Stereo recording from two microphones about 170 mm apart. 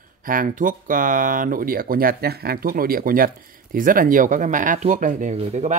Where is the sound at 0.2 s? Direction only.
55° right (ahead or behind).